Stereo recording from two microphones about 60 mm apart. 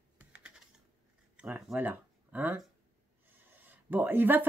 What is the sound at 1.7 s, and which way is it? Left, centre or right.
Speech, right.